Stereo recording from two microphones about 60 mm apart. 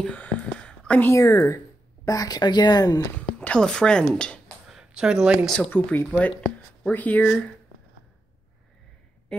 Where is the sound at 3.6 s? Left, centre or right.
Centre.